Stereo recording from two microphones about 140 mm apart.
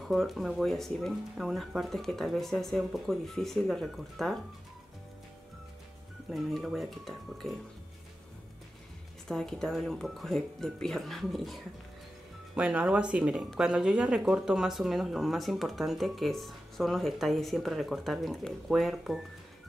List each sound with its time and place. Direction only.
0.0 s speech: centre (ahead or behind)
6.3 s speech: centre (ahead or behind)
9.3 s speech: 5° left (ahead or behind)